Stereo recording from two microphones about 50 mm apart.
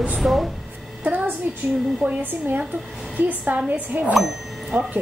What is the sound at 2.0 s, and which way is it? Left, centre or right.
Speech, right.